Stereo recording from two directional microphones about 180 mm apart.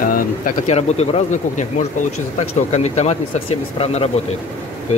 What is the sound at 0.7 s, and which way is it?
Speech, 35° left (ahead or behind).